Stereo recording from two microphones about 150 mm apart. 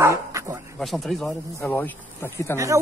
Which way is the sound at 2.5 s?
20° right (ahead or behind).